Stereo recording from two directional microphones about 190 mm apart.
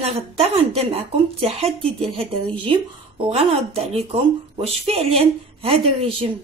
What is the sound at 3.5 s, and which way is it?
Speech, 30° right (ahead or behind).